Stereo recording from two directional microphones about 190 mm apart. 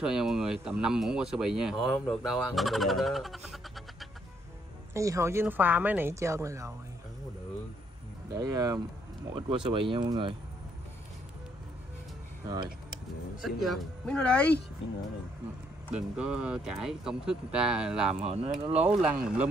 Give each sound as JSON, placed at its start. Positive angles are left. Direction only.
{"t": 0.0, "sound": "speech", "side_deg": -5}
{"t": 4.9, "sound": "speech", "side_deg": -15}
{"t": 8.4, "sound": "speech", "side_deg": -20}
{"t": 13.4, "sound": "speech", "side_deg": 0}
{"t": 15.9, "sound": "speech", "side_deg": -5}
{"t": 18.2, "sound": "speech", "side_deg": -35}
{"t": 18.9, "sound": "speech", "side_deg": -5}